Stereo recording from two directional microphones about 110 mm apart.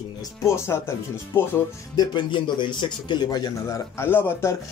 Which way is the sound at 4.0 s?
20° left (ahead or behind).